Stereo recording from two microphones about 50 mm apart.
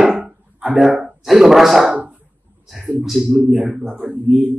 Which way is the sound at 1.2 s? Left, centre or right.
Centre.